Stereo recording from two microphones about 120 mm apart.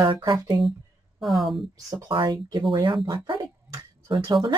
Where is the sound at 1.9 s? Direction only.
40° right (ahead or behind).